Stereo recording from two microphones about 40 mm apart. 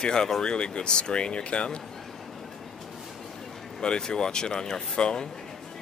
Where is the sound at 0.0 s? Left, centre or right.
Centre.